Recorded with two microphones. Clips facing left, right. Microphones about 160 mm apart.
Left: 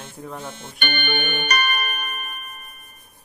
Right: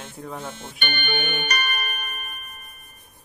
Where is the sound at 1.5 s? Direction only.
60° left (ahead or behind).